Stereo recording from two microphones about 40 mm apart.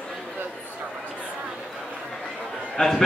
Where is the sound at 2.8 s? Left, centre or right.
Centre.